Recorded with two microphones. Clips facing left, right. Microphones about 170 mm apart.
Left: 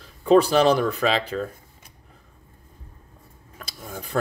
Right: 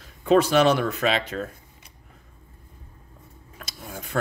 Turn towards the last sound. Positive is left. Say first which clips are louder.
# left 2 dB
turn(degrees=40)  # may be behind; listen again after turning